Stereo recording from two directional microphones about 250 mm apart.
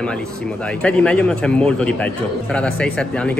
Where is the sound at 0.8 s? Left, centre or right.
Centre.